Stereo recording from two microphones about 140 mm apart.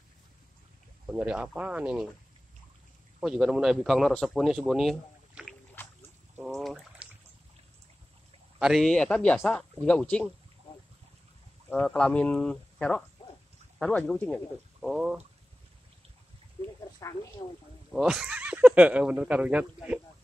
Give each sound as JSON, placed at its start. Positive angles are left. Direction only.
{"t": 1.1, "sound": "speech", "side_deg": -10}
{"t": 3.2, "sound": "a man's voice", "side_deg": -5}
{"t": 5.8, "sound": "rowboat", "side_deg": 15}
{"t": 6.4, "sound": "a sound", "side_deg": 0}
{"t": 8.5, "sound": "speech", "side_deg": 0}
{"t": 11.7, "sound": "speech", "side_deg": 10}
{"t": 14.9, "sound": "speech", "side_deg": -5}
{"t": 17.0, "sound": "speech", "side_deg": 25}
{"t": 17.9, "sound": "speech", "side_deg": -5}